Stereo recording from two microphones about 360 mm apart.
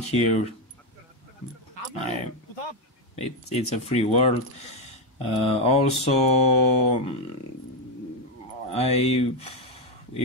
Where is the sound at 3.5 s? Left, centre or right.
Centre.